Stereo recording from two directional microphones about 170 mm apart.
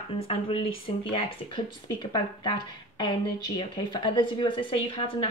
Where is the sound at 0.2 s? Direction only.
35° left (ahead or behind).